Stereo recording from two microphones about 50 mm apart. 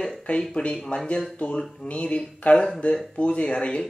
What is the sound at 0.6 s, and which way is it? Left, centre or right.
Speech, left.